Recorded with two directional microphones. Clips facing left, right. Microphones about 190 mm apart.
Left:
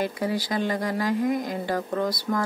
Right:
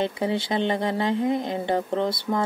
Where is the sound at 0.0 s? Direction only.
25° right (ahead or behind).